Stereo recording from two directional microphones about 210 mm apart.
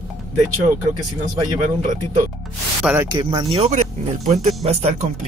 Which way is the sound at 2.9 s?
20° right (ahead or behind).